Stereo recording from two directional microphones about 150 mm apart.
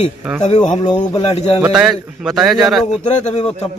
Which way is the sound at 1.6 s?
5° right (ahead or behind).